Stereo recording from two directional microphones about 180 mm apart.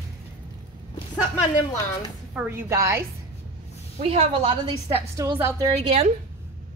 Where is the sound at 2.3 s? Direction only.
10° right (ahead or behind).